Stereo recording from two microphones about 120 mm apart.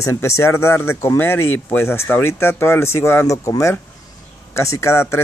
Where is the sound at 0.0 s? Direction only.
25° left (ahead or behind).